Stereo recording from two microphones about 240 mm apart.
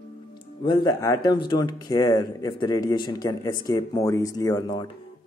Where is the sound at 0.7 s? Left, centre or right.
Centre.